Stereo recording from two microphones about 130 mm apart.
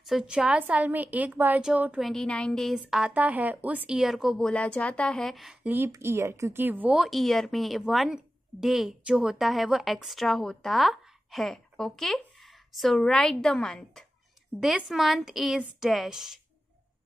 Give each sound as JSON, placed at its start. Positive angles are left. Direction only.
{"t": 0.0, "sound": "a woman's voice", "side_deg": -5}
{"t": 5.9, "sound": "speech", "side_deg": -20}
{"t": 7.0, "sound": "a woman's voice", "side_deg": 0}